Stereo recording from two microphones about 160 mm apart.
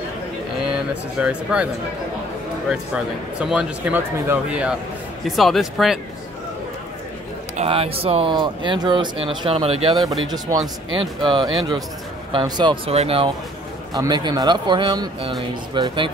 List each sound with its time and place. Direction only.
1.2 s speech: 5° right (ahead or behind)
2.7 s speech: 5° right (ahead or behind)
7.5 s speech: 40° right (ahead or behind)
9.9 s speech: centre (ahead or behind)
10.2 s a man's voice: 25° right (ahead or behind)
12.9 s speech: 40° right (ahead or behind)
13.9 s a man's voice: 25° right (ahead or behind)